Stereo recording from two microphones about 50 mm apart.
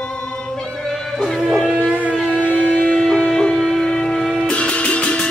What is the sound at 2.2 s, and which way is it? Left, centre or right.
Music, left.